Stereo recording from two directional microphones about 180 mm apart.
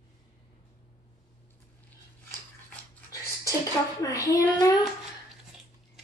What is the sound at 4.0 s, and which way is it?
Speech, 20° left (ahead or behind).